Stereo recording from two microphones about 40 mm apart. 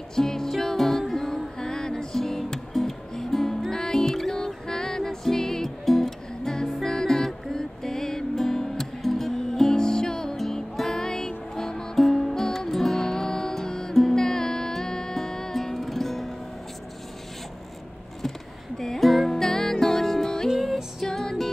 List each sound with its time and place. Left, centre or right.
0.1 s music: centre
18.8 s music: centre
20.4 s music: centre
21.1 s music: centre